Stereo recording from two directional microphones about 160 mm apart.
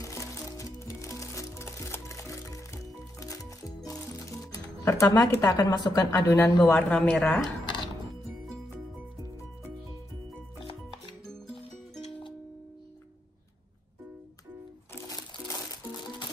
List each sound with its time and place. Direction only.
0.0 s music: 20° left (ahead or behind)
4.3 s speech: 20° left (ahead or behind)
6.1 s speech: 15° left (ahead or behind)
12.0 s music: 30° left (ahead or behind)
15.0 s music: 20° left (ahead or behind)